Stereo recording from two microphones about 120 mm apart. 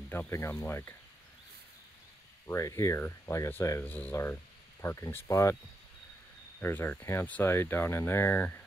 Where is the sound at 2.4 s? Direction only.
25° left (ahead or behind).